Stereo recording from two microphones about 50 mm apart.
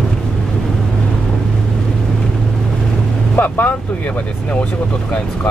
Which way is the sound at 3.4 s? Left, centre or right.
Left.